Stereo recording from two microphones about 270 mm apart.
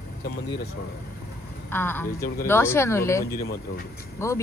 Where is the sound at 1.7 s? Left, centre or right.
Centre.